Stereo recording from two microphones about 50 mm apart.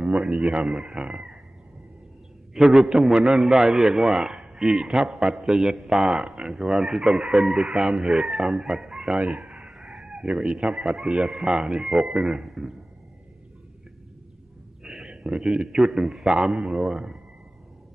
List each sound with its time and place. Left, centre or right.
0.3 s speech: right
2.5 s speech: centre
9.7 s chicken: centre
11.1 s speech: centre
11.9 s speech: centre
14.8 s a sound: centre
15.2 s speech: centre
15.6 s speech: centre